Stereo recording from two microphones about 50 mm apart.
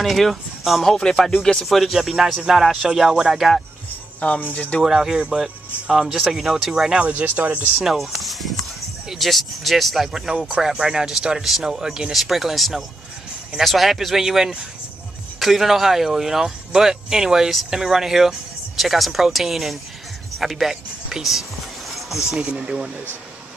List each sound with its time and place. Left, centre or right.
0.0 s speech: centre
0.9 s speech: centre
1.7 s speech: centre
4.2 s speech: left
4.8 s speech: centre
6.9 s speech: right
7.8 s speech: centre
22.3 s speech: centre